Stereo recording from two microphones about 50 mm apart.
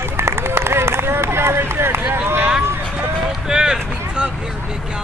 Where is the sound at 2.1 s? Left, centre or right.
Right.